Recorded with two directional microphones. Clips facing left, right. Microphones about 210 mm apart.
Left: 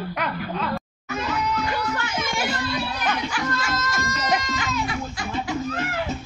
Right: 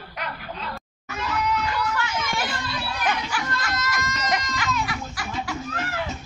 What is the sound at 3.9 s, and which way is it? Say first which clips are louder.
A woman's voice: left 2 dB; 30° left (ahead or behind).